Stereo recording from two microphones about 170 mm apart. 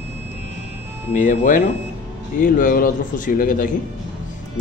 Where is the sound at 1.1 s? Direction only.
50° left (ahead or behind).